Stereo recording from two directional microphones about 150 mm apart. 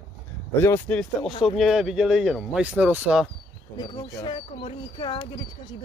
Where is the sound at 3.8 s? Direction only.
25° left (ahead or behind).